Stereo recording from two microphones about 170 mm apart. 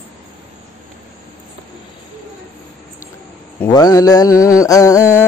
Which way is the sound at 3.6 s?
20° left (ahead or behind).